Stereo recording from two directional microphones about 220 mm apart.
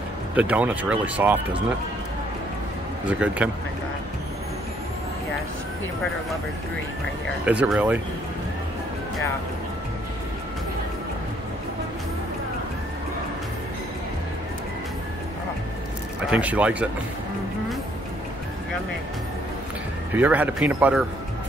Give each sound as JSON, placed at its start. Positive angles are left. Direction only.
{"t": 0.4, "sound": "speech", "side_deg": -5}
{"t": 3.1, "sound": "speech", "side_deg": -5}
{"t": 7.4, "sound": "speech", "side_deg": -5}
{"t": 16.3, "sound": "speech", "side_deg": -5}
{"t": 20.1, "sound": "speech", "side_deg": -10}